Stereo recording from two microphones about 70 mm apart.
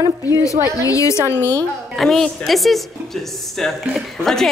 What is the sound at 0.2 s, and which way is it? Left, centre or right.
A woman's voice, left.